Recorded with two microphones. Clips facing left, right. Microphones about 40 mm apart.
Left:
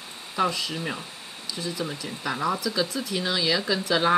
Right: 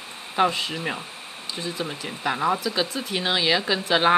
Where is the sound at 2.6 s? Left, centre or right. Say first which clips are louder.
Right 1 dB; right.